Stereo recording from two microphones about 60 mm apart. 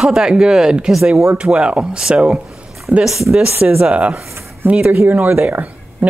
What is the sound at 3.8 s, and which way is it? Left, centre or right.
Speech, right.